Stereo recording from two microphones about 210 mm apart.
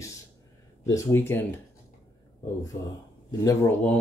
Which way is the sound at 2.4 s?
15° left (ahead or behind).